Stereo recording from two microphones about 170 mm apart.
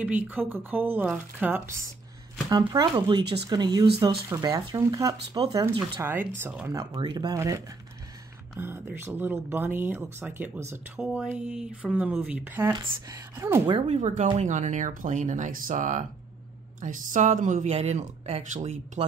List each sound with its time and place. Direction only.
0.0 s speech: 10° right (ahead or behind)
2.5 s speech: 25° right (ahead or behind)
13.7 s speech: 40° right (ahead or behind)